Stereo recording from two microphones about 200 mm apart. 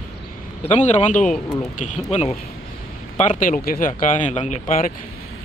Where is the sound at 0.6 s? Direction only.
35° left (ahead or behind).